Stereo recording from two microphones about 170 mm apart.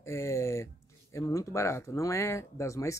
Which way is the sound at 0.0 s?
15° left (ahead or behind).